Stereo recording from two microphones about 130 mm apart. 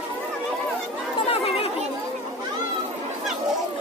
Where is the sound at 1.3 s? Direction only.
50° left (ahead or behind).